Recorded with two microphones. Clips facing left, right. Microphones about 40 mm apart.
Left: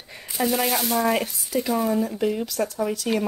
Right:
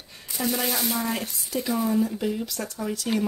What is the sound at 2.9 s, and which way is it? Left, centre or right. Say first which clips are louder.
Speech: left 2 dB; centre.